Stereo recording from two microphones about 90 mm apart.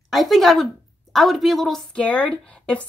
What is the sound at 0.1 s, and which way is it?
Speech, centre (ahead or behind).